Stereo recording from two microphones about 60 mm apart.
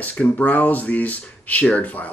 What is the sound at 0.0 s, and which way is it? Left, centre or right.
Speech, left.